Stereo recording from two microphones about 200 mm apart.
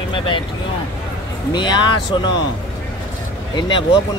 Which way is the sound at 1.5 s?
20° left (ahead or behind).